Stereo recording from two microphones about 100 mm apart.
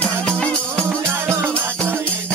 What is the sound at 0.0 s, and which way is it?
Music, 10° left (ahead or behind).